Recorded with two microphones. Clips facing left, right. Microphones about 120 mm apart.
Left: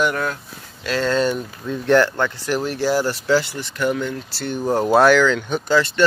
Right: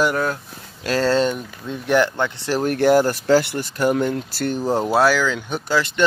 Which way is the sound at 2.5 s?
45° right (ahead or behind).